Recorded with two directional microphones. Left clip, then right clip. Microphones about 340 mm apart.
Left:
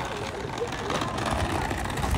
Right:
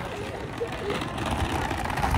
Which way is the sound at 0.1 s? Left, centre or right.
Centre.